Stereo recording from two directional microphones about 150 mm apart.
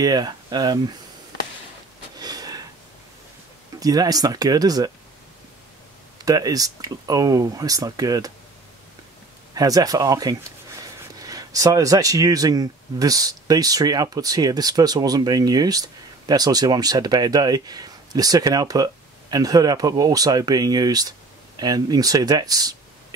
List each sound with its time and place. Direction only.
0.0 s speech: 25° right (ahead or behind)
2.1 s a sound: 25° right (ahead or behind)
3.8 s speech: 25° right (ahead or behind)
6.2 s speech: 25° right (ahead or behind)
9.6 s speech: 25° right (ahead or behind)